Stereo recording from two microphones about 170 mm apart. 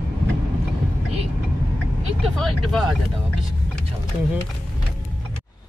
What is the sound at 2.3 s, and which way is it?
Speech, centre (ahead or behind).